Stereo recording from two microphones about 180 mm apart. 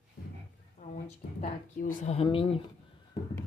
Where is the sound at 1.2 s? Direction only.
55° left (ahead or behind).